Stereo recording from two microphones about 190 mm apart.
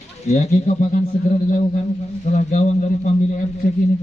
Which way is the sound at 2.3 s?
40° left (ahead or behind).